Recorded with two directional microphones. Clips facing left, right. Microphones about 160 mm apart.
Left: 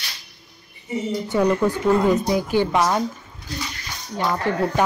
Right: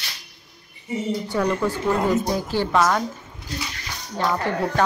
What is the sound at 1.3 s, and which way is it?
Speech, 20° left (ahead or behind).